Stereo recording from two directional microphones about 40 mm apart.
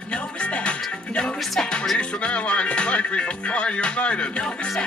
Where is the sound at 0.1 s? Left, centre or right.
Left.